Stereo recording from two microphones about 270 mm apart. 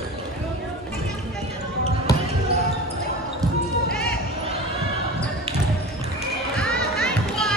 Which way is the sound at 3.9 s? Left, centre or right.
Left.